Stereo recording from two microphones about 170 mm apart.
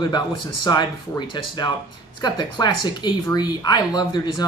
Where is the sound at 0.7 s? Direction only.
25° left (ahead or behind).